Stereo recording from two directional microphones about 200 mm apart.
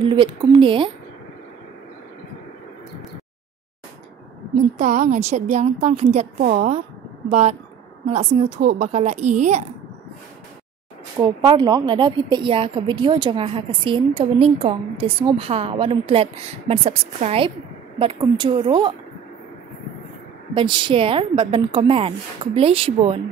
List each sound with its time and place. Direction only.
0.1 s a woman's voice: 25° right (ahead or behind)
4.7 s a woman's voice: 40° right (ahead or behind)
11.1 s a woman's voice: 20° right (ahead or behind)
20.5 s a woman's voice: 25° right (ahead or behind)